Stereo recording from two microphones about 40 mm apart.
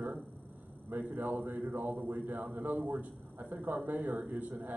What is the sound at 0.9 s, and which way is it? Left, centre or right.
Speech, right.